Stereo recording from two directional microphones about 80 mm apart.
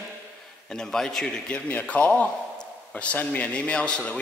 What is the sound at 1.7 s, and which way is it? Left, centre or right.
A man's voice, centre.